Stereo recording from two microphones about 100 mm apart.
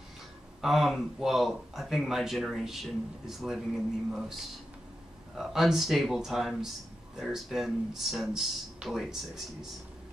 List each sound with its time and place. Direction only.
0.6 s speech: centre (ahead or behind)